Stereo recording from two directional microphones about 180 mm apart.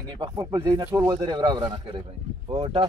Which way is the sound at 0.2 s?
20° right (ahead or behind).